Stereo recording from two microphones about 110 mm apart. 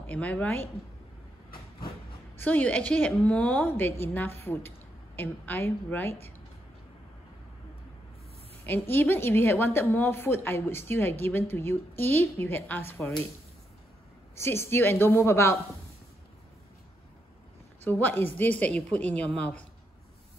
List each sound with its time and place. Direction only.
0.0 s a woman's voice: 15° left (ahead or behind)
2.4 s a woman's voice: 15° left (ahead or behind)
8.6 s a woman's voice: 20° left (ahead or behind)
14.3 s a woman's voice: 25° left (ahead or behind)
17.8 s a woman's voice: 15° left (ahead or behind)